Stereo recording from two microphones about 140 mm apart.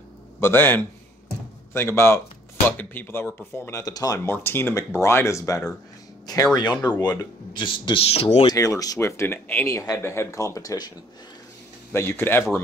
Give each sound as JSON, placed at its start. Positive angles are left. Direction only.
{"t": 0.4, "sound": "speech", "side_deg": 15}
{"t": 8.5, "sound": "speech", "side_deg": 25}
{"t": 11.9, "sound": "speech", "side_deg": 15}